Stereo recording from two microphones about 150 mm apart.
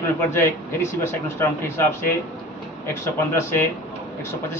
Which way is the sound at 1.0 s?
15° left (ahead or behind).